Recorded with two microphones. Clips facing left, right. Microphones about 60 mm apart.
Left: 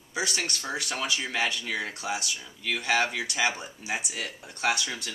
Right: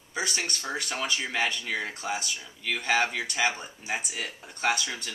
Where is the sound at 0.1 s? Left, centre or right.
Centre.